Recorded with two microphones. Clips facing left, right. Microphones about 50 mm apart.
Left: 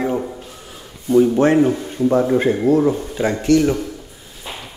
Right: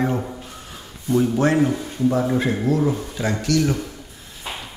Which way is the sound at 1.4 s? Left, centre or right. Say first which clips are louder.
Left 4 dB; left.